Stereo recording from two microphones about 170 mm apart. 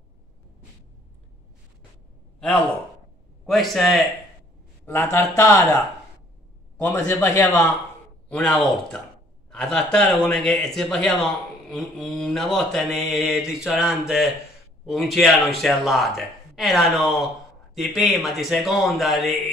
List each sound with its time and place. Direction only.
3.4 s mantra: centre (ahead or behind)
4.8 s a man's voice: 15° left (ahead or behind)
6.8 s a man's voice: 10° left (ahead or behind)
8.3 s mantra: 5° left (ahead or behind)